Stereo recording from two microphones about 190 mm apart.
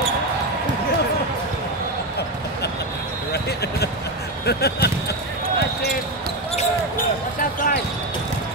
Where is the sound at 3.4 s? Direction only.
60° left (ahead or behind).